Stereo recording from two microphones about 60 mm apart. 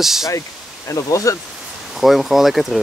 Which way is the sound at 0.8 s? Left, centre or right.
Left.